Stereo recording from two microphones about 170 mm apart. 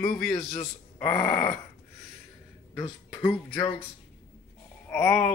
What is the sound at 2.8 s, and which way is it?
Speech, 20° left (ahead or behind).